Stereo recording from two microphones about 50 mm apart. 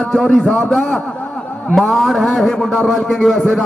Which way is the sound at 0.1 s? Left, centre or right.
Centre.